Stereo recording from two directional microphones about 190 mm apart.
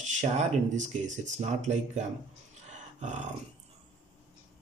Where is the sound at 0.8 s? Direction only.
40° right (ahead or behind).